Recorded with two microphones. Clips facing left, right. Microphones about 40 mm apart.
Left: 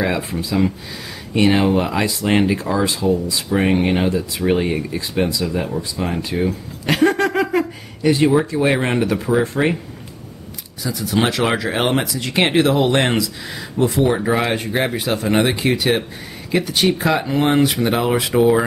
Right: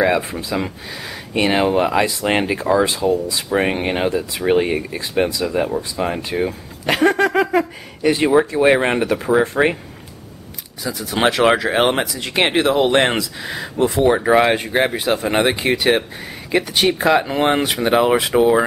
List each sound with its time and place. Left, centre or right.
0.0 s speech: centre
10.8 s speech: centre